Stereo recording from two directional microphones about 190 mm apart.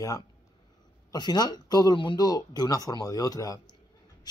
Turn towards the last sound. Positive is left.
turn(degrees=20)  # may be behind; listen again after turning